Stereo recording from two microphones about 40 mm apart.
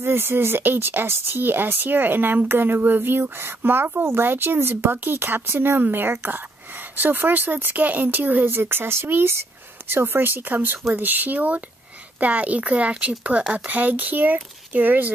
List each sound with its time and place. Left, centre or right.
0.0 s speech: right
5.8 s speech: right
8.5 s speech: right
13.5 s speech: right